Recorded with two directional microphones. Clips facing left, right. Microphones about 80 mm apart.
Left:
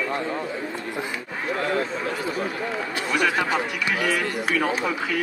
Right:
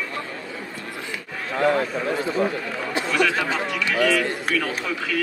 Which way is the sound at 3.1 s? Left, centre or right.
Left.